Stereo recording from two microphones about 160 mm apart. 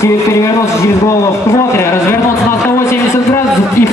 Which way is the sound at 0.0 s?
20° left (ahead or behind).